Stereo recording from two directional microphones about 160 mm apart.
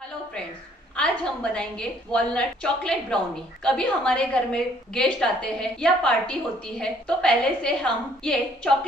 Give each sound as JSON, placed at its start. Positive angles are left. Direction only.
{"t": 0.9, "sound": "a woman's voice", "side_deg": 5}